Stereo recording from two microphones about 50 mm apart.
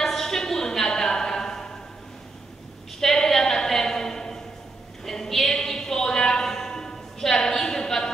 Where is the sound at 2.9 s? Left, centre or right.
Centre.